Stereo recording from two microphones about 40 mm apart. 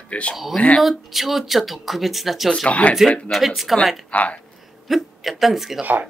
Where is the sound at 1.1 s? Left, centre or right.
Centre.